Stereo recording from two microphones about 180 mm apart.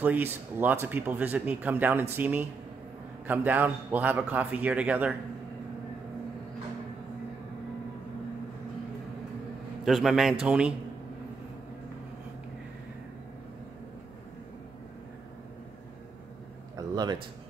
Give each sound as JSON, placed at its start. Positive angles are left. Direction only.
{"t": 0.0, "sound": "speech", "side_deg": -10}
{"t": 9.8, "sound": "a man's voice", "side_deg": 0}
{"t": 16.7, "sound": "a sound", "side_deg": -20}